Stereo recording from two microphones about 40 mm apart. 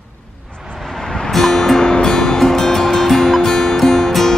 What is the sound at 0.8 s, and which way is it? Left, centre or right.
Music, centre.